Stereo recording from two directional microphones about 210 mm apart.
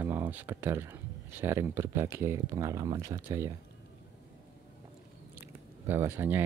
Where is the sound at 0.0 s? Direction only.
10° right (ahead or behind).